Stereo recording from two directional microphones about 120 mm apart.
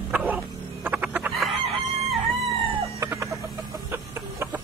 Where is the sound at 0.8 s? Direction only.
15° right (ahead or behind).